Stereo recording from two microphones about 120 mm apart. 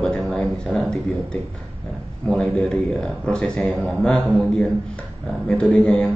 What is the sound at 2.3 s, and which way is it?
A man's voice, 5° left (ahead or behind).